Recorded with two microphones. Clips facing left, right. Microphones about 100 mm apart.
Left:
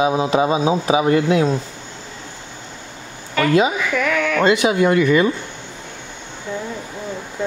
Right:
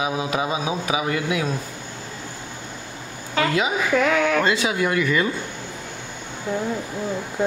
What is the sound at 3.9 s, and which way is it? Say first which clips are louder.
Speech: right 4 dB; 30° right (ahead or behind).